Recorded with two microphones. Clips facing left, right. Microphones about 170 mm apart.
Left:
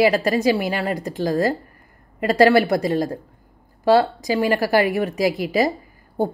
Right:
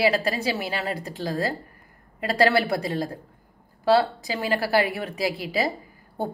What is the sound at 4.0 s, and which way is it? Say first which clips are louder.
Speech: left 6 dB; 45° left (ahead or behind).